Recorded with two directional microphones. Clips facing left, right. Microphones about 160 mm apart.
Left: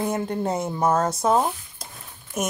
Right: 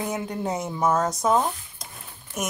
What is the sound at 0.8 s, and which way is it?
Speech, 30° left (ahead or behind).